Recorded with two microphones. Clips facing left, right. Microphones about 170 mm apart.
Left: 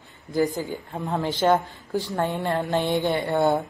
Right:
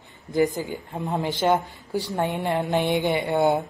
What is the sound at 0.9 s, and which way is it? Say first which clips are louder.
A woman's voice: even; 15° right (ahead or behind).